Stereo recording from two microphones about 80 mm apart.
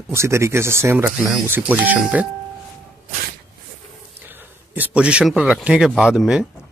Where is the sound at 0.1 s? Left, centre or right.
Right.